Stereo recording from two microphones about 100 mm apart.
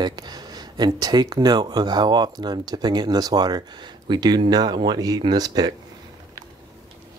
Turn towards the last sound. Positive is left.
turn(degrees=-40)  # may be behind; listen again after turning